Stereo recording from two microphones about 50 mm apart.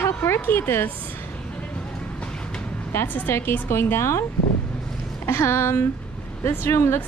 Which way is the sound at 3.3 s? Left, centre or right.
Left.